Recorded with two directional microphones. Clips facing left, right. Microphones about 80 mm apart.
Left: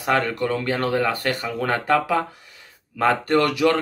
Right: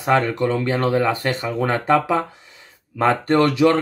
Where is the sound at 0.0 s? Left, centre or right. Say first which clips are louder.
Right 3 dB; right.